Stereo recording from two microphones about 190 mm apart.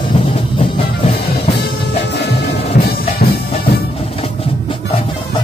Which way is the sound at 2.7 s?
55° left (ahead or behind).